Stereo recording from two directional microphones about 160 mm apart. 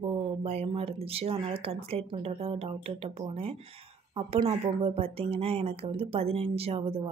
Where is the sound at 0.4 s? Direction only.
40° right (ahead or behind).